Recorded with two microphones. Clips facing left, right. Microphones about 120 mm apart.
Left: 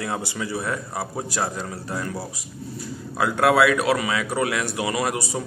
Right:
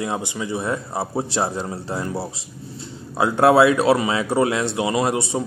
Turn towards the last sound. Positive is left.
turn(degrees=-25)  # may be behind; listen again after turning